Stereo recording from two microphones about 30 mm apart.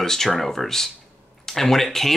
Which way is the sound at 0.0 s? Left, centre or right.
Centre.